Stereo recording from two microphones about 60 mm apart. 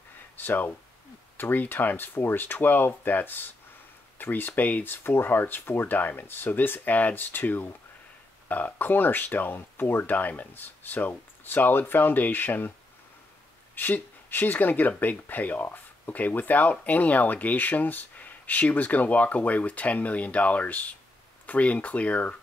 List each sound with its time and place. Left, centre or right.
0.4 s speech: left
13.7 s speech: left